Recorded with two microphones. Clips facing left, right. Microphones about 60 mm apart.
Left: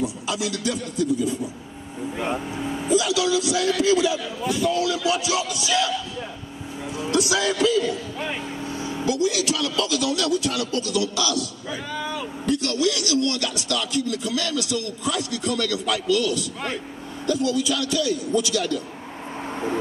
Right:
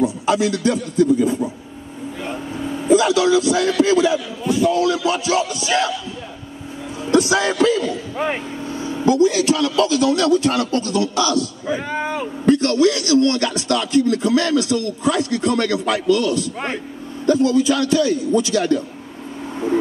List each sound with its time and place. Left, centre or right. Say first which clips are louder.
0.0 s a man's voice: right 9 dB; right
2.2 s vehicle: right 1 dB; centre
2.9 s a man's voice: right 7 dB; right
7.1 s a man's voice: right 6 dB; right